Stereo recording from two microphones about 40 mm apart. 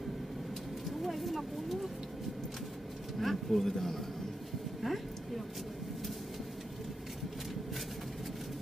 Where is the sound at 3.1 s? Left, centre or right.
Centre.